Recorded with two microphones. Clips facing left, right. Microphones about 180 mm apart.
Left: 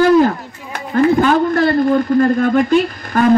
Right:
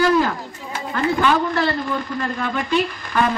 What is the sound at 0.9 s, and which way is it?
A man's voice, 45° left (ahead or behind).